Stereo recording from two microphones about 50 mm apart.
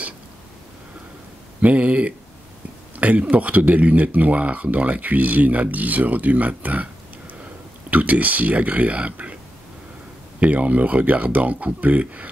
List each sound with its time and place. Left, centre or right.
1.6 s speech: right
7.9 s speech: right
10.4 s speech: right